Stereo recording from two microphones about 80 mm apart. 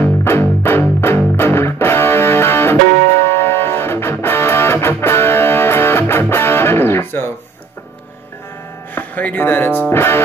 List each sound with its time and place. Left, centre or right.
0.2 s music: left
8.9 s speech: left